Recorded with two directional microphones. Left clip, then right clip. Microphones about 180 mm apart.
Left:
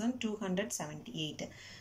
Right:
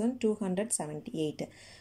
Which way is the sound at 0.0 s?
30° right (ahead or behind).